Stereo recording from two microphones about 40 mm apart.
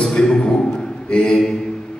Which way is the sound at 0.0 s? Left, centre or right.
Centre.